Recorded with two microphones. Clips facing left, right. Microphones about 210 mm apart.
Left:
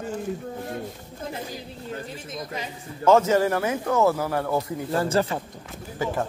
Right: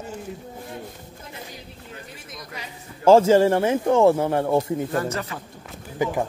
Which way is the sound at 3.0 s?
30° right (ahead or behind).